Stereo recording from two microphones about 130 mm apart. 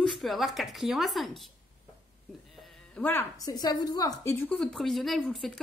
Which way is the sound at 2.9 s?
15° left (ahead or behind).